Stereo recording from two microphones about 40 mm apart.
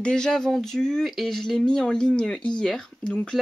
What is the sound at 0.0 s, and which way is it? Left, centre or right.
Speech, centre.